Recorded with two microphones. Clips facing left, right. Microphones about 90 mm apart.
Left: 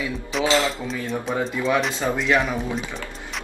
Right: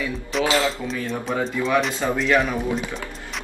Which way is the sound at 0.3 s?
Centre (ahead or behind).